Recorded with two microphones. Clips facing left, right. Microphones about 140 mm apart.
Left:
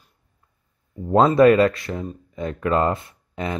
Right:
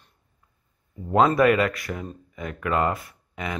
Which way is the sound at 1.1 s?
25° left (ahead or behind).